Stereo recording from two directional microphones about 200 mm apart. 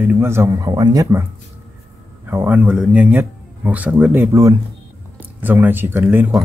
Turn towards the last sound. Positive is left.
turn(degrees=-10)  # may be behind; listen again after turning